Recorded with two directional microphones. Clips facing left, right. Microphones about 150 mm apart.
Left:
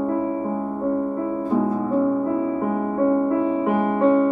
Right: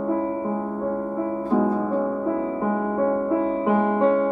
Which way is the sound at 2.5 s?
15° left (ahead or behind).